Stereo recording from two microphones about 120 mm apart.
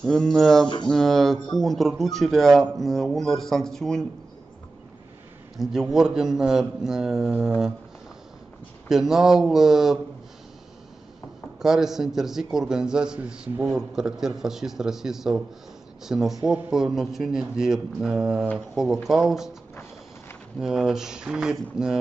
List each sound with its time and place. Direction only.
0.0 s a man's voice: 5° left (ahead or behind)
5.6 s a man's voice: 5° right (ahead or behind)
8.8 s a man's voice: 5° right (ahead or behind)
11.6 s a man's voice: 5° right (ahead or behind)
19.7 s music: 20° left (ahead or behind)
20.6 s a man's voice: 5° right (ahead or behind)